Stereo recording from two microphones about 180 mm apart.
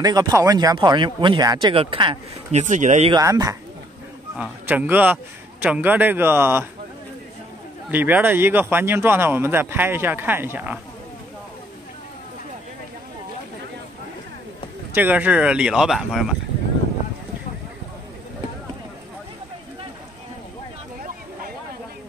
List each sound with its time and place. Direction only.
0.0 s speech: 20° right (ahead or behind)
2.5 s speech: 45° right (ahead or behind)
3.1 s speech: 20° right (ahead or behind)
7.9 s speech: 10° right (ahead or behind)
15.0 s speech: 10° right (ahead or behind)